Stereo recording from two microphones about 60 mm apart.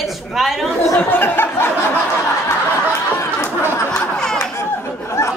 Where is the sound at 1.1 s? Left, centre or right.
Left.